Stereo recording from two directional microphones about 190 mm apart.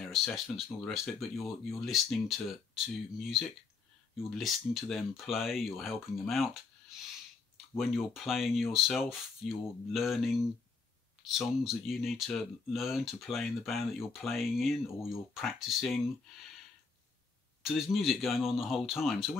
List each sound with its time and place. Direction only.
0.1 s speech: centre (ahead or behind)
17.6 s speech: centre (ahead or behind)